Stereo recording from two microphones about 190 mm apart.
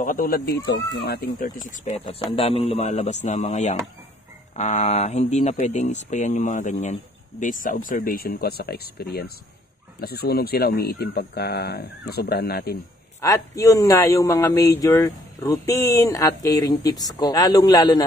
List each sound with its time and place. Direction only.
0.0 s speech: 45° left (ahead or behind)
1.9 s speech: 30° left (ahead or behind); by 12.7 s 55° left (ahead or behind)
13.2 s a man's voice: 15° left (ahead or behind)